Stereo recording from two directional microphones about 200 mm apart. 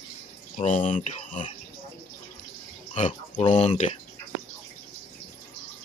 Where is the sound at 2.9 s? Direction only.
35° left (ahead or behind).